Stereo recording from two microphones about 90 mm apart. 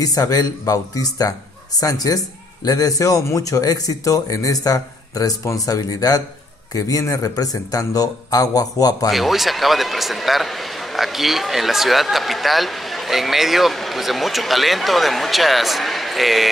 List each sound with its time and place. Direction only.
0.0 s a man's voice: 45° left (ahead or behind)
9.1 s a man's voice: centre (ahead or behind)